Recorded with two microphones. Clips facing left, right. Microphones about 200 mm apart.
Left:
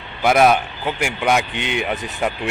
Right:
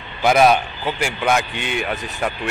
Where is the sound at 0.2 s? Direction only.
Centre (ahead or behind).